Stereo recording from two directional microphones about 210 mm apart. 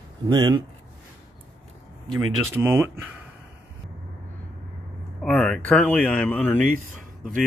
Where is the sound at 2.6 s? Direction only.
10° right (ahead or behind).